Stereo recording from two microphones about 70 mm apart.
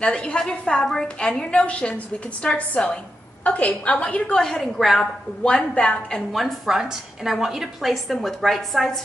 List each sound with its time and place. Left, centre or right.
0.0 s a woman's voice: centre
6.3 s a woman's voice: centre